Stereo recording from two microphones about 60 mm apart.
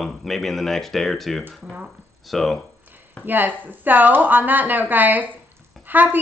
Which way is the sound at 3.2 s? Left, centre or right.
Right.